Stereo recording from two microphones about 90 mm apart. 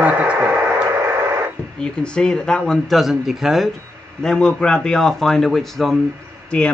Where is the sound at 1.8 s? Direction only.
10° left (ahead or behind).